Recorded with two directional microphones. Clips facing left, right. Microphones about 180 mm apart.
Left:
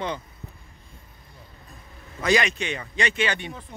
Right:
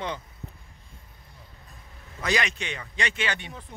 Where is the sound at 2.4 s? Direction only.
5° left (ahead or behind).